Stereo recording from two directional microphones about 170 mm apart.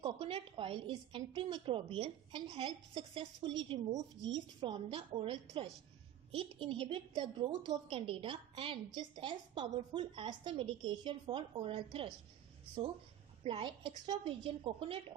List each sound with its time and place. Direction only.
0.0 s a woman's voice: 30° right (ahead or behind)
13.4 s a woman's voice: 30° right (ahead or behind)